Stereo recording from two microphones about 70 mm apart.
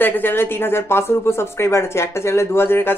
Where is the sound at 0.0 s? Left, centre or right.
Left.